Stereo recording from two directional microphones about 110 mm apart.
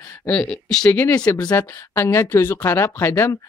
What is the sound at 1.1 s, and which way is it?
Speech, 35° left (ahead or behind).